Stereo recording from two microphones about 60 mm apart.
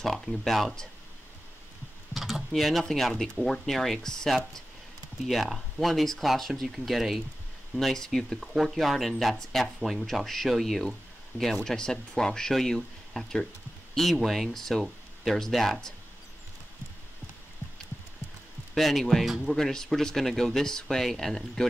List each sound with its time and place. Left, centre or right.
0.0 s speech: centre
2.1 s speech: centre
18.8 s speech: centre